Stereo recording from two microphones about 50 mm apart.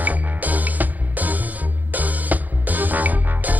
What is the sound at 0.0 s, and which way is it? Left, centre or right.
Music, right.